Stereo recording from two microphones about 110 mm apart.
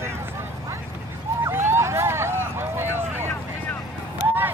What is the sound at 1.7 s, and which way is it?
Vehicle, 25° right (ahead or behind).